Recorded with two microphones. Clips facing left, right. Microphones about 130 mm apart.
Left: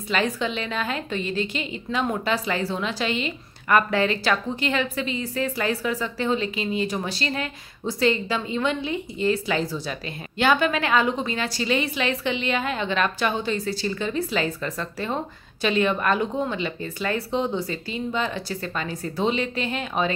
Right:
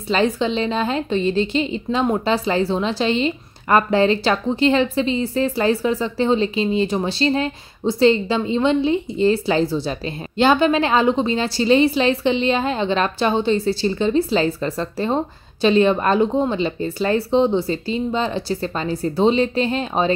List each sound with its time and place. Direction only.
0.1 s a woman's voice: 30° right (ahead or behind)